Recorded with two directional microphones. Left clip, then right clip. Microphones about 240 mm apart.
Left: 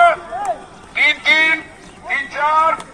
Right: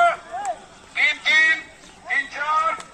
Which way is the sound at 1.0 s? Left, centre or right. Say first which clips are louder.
Left 4 dB; centre.